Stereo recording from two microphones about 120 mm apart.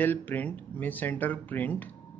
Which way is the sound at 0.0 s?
15° left (ahead or behind).